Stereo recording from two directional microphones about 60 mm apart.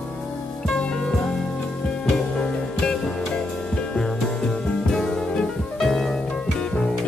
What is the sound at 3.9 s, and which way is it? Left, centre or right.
Music, centre.